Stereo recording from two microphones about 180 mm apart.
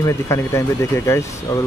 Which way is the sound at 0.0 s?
15° left (ahead or behind).